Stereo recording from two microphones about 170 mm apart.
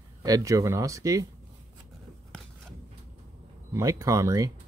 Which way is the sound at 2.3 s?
5° left (ahead or behind).